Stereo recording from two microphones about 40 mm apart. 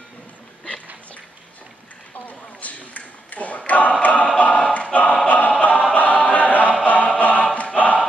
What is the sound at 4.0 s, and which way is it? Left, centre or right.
Choir, left.